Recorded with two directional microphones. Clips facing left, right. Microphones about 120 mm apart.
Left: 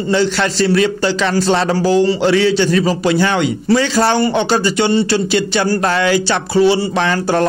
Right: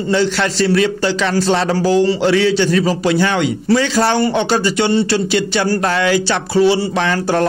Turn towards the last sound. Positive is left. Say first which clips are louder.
# left 1 dB
turn(degrees=30)  # may be behind; listen again after turning